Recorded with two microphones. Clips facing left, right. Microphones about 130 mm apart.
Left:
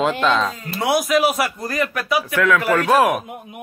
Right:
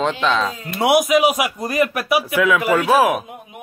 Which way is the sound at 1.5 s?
20° right (ahead or behind).